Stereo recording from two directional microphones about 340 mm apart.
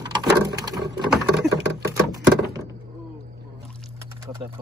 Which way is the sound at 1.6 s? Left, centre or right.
Right.